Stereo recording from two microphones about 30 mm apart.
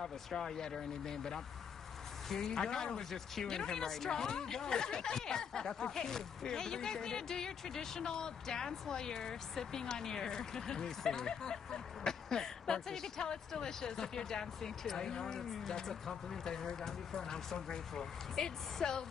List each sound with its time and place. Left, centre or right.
0.0 s speech: centre